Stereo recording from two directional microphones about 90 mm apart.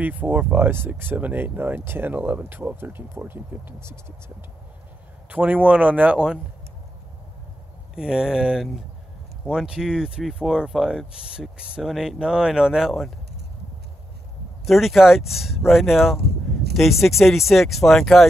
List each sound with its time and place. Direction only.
0.0 s speech: 20° right (ahead or behind)
5.3 s speech: 15° right (ahead or behind)
7.9 s speech: 10° right (ahead or behind)
14.6 s speech: centre (ahead or behind)